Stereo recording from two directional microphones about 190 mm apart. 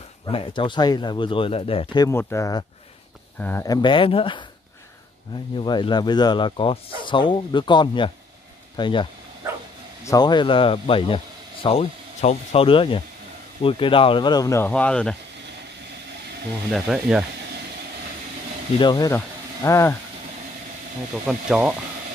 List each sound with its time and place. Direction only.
0.3 s speech: 25° left (ahead or behind)
2.0 s speech: 15° left (ahead or behind)
5.6 s speech: 25° left (ahead or behind)
14.7 s speech: 5° left (ahead or behind)
16.7 s speech: centre (ahead or behind)
18.8 s speech: 20° left (ahead or behind)
21.1 s speech: 5° right (ahead or behind)